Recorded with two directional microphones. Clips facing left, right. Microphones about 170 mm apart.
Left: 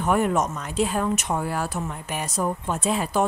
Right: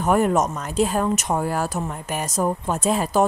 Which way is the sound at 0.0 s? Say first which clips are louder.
Right 3 dB; 40° right (ahead or behind).